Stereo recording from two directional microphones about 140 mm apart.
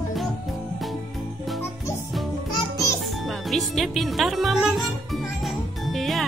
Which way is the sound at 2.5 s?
25° left (ahead or behind).